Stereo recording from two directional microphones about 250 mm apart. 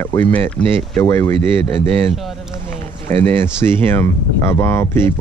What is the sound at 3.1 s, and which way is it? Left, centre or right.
Speech, right.